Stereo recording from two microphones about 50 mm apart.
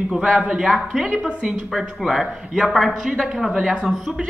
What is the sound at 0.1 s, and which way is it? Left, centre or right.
A man's voice, centre.